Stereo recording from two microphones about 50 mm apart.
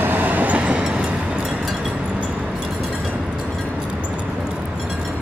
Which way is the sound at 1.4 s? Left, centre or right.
Centre.